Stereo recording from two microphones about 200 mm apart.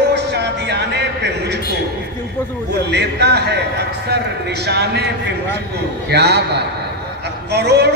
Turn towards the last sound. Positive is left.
turn(degrees=-55)  # may be behind; listen again after turning